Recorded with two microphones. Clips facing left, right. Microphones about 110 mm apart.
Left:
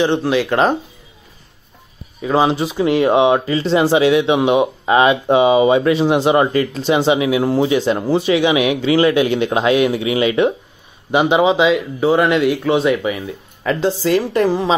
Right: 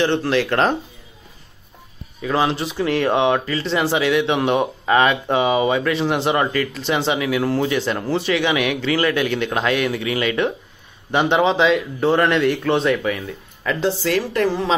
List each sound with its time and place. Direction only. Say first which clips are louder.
0.0 s speech: left 3 dB; 10° left (ahead or behind)
2.2 s speech: left 4 dB; 20° left (ahead or behind)